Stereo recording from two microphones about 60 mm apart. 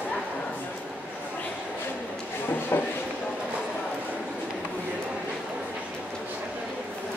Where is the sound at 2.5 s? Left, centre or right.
Left.